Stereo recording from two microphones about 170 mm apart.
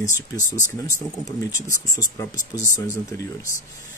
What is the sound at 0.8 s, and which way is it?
Speech, 20° left (ahead or behind).